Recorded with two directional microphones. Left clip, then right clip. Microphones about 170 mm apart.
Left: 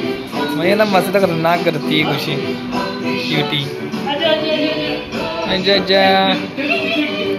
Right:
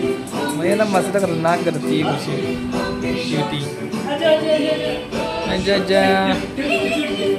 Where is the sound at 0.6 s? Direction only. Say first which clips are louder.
Left 4 dB; 5° right (ahead or behind).